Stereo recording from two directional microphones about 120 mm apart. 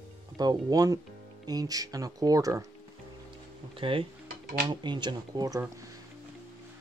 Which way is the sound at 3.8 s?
50° right (ahead or behind).